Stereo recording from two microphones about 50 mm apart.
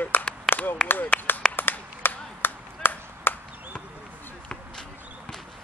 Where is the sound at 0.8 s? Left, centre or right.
Left.